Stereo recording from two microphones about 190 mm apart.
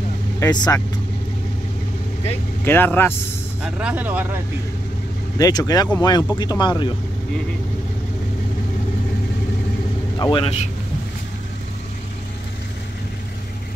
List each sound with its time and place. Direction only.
0.4 s speech: 20° left (ahead or behind)
2.6 s speech: 10° left (ahead or behind)
3.6 s speech: 5° right (ahead or behind)
5.4 s speech: 20° left (ahead or behind)
10.1 s speech: 25° left (ahead or behind)